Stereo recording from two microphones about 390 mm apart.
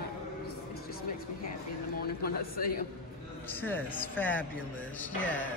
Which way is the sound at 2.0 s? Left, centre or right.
Left.